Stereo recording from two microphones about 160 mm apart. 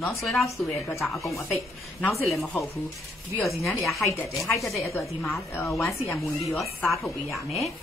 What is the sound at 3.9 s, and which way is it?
Speech, centre (ahead or behind).